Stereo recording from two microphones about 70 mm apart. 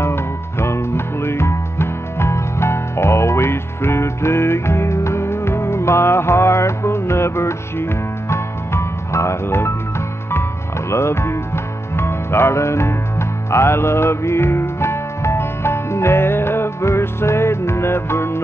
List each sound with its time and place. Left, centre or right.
0.0 s music: left
10.9 s music: left